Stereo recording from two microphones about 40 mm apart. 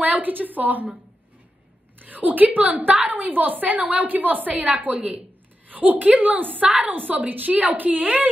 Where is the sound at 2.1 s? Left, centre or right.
Right.